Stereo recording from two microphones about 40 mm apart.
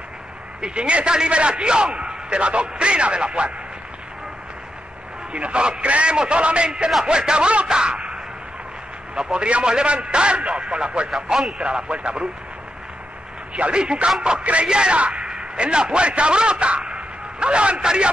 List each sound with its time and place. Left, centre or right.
0.6 s a man's voice: right
5.3 s a man's voice: right
13.6 s a man's voice: right
14.7 s a man's voice: right